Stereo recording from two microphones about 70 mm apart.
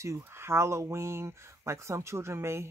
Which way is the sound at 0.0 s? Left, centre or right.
Right.